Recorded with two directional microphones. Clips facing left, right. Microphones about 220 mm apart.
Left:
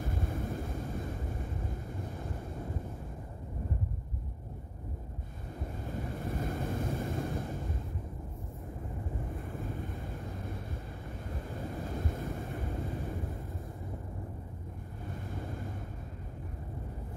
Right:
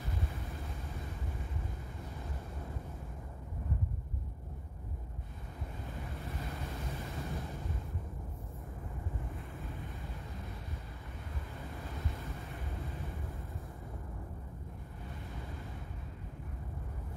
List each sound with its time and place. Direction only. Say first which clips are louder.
0.0 s vehicle: left 6 dB; 45° left (ahead or behind)
6.2 s waves: left 9 dB; 45° left (ahead or behind)
11.6 s wind noise: left 7 dB; 45° left (ahead or behind)